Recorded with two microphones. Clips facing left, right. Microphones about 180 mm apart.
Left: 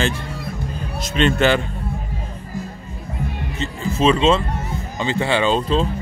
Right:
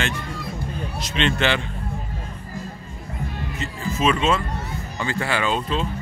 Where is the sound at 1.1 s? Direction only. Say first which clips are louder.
Left 5 dB; 45° left (ahead or behind).